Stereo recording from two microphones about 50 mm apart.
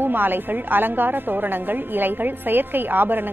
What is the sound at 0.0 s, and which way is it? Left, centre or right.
A woman's voice, right.